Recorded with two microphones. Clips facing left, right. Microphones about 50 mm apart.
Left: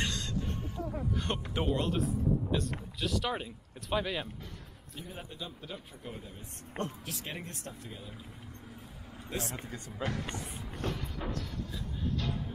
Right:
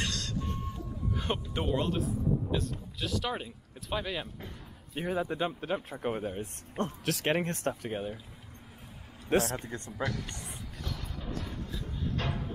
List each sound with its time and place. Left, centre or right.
0.0 s a sound: centre
1.1 s speech: centre
4.9 s a man's voice: right
5.4 s a man's voice: right
7.1 s a man's voice: right
9.3 s a man's voice: right
10.8 s music: left
12.2 s a sound: right